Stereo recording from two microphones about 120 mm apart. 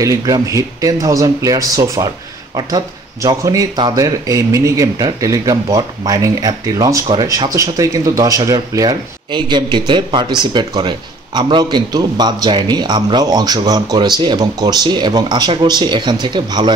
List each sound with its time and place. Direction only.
0.0 s speech: 30° right (ahead or behind)